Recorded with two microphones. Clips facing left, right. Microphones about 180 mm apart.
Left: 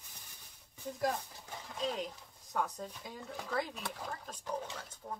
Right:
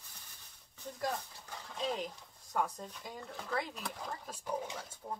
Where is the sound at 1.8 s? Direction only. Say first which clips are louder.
Even; centre (ahead or behind).